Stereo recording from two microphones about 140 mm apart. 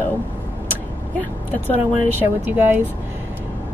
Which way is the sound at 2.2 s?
15° right (ahead or behind).